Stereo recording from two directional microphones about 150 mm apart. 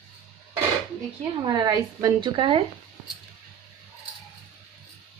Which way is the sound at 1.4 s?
25° right (ahead or behind).